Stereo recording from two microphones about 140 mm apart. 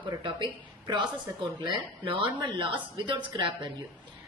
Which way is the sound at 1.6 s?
40° right (ahead or behind).